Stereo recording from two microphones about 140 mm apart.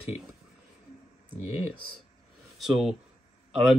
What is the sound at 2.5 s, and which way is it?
Speech, centre (ahead or behind).